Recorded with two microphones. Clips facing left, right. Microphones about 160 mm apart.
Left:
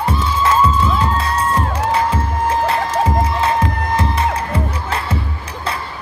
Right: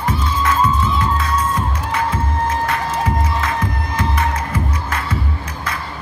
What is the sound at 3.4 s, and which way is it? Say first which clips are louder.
Music: left 5 dB; 30° left (ahead or behind).